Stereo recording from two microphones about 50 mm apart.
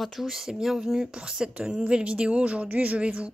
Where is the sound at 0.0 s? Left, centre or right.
Centre; by 3.3 s right.